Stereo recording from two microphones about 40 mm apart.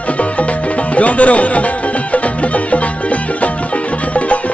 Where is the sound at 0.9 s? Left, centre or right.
Left.